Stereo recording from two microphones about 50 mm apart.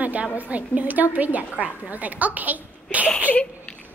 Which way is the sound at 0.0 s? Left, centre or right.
Right.